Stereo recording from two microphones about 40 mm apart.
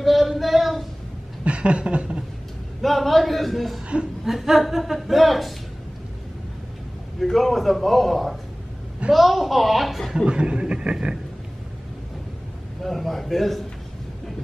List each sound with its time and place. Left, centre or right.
0.0 s a sound: centre
1.4 s chuckle: right
2.8 s a woman's voice: centre
7.2 s a woman's voice: centre
10.1 s a man's voice: right
12.8 s a woman's voice: centre